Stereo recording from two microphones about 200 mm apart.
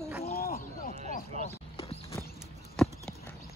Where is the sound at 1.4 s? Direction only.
30° left (ahead or behind).